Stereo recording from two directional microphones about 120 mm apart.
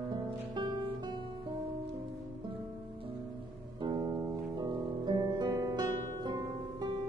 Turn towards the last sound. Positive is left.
turn(degrees=-35)  # may be behind; listen again after turning